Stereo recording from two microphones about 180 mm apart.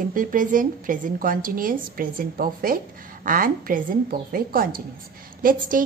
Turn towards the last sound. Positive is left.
turn(degrees=-50)  # may be behind; listen again after turning